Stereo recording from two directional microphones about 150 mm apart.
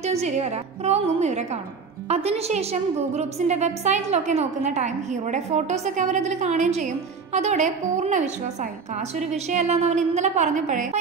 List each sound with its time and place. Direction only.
0.0 s a woman's voice: 45° right (ahead or behind)
9.3 s a woman's voice: 50° right (ahead or behind)